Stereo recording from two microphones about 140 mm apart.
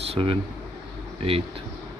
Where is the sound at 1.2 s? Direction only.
40° right (ahead or behind).